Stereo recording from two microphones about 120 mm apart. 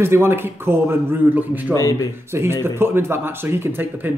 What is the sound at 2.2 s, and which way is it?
Speech, 20° right (ahead or behind).